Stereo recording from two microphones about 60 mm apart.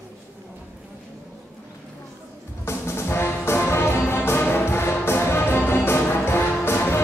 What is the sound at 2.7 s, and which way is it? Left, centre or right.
Music, left.